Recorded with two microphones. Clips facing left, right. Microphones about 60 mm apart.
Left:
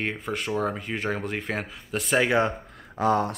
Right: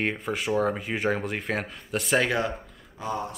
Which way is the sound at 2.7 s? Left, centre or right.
Left.